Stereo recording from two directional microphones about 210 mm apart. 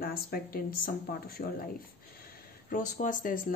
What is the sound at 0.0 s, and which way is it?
Speech, 45° left (ahead or behind).